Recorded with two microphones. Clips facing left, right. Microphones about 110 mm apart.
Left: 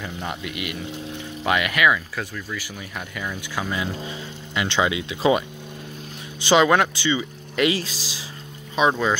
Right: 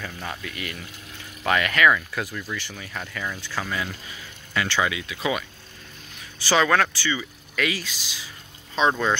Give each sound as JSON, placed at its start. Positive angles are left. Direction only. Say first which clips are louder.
{"t": 0.0, "sound": "speech", "louder": "left 3 dB", "side_deg": 15}
{"t": 6.4, "sound": "speech", "louder": "left 3 dB", "side_deg": 20}
{"t": 7.8, "sound": "speech", "louder": "left 4 dB", "side_deg": 35}
{"t": 8.7, "sound": "speech", "louder": "left 2 dB", "side_deg": 10}